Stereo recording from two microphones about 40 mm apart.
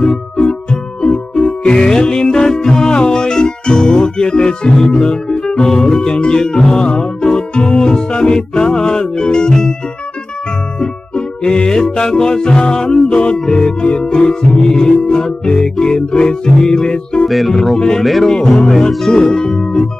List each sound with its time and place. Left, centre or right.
0.0 s music: centre
10.8 s music: left
17.3 s music: centre
18.0 s music: centre
19.1 s music: centre